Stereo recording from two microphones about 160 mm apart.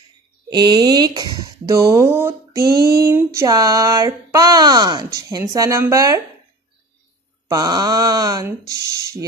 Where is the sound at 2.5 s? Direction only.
75° right (ahead or behind).